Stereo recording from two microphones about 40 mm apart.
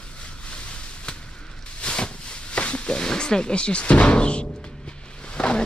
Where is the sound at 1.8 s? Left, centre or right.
Left.